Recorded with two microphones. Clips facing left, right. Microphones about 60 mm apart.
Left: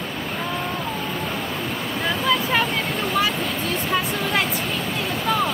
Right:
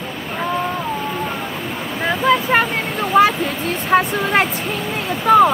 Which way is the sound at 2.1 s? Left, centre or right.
Right.